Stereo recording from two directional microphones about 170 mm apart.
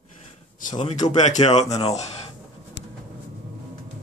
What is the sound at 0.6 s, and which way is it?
Speech, 45° left (ahead or behind).